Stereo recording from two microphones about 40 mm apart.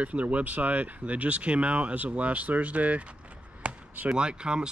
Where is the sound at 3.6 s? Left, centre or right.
Right.